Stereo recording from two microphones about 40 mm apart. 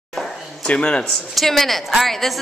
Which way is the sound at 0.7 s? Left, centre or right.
Left.